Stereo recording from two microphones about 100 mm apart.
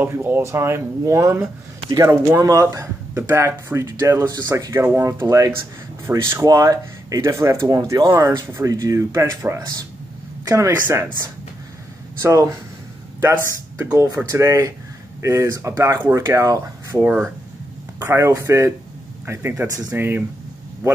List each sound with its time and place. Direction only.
0.0 s speech: 20° right (ahead or behind)
1.9 s speech: 40° right (ahead or behind)
6.4 s speech: 35° right (ahead or behind)
12.2 s speech: 30° right (ahead or behind)
17.0 s speech: 20° right (ahead or behind)